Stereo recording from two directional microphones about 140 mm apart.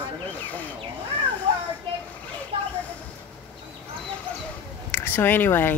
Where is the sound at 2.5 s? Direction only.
40° right (ahead or behind).